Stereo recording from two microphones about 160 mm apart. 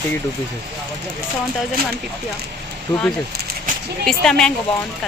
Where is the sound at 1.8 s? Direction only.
70° right (ahead or behind).